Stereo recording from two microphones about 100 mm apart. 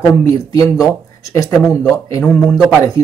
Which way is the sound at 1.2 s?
35° left (ahead or behind).